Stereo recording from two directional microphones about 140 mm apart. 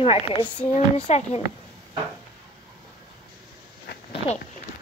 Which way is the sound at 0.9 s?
50° left (ahead or behind).